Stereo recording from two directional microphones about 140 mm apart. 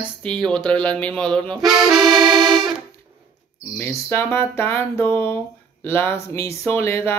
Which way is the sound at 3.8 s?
15° left (ahead or behind).